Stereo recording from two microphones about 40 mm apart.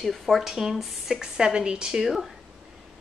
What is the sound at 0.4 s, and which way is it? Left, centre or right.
Speech, centre.